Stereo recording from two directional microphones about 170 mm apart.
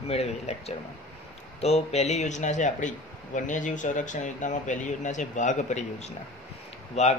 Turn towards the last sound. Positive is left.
turn(degrees=40)  # may be behind; listen again after turning